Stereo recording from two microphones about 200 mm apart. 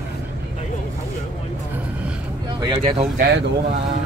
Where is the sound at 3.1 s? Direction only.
50° right (ahead or behind).